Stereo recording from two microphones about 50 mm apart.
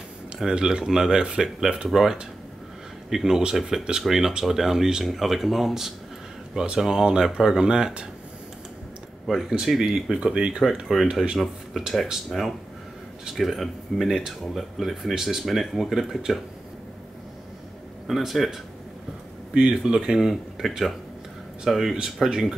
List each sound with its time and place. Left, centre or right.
0.4 s speech: centre
3.1 s speech: centre
6.5 s speech: centre
9.3 s speech: centre
10.1 s speech: centre
10.6 s speech: centre
18.0 s speech: centre
19.5 s speech: centre